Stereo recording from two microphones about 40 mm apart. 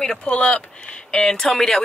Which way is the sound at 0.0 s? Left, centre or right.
Left.